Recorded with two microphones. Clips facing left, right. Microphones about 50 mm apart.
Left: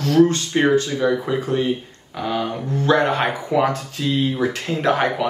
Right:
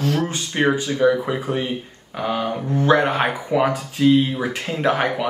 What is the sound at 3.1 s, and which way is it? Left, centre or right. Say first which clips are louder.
Speech: even; centre.